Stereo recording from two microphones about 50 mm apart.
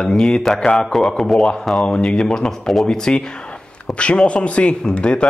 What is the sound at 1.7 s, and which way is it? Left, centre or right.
Speech, centre.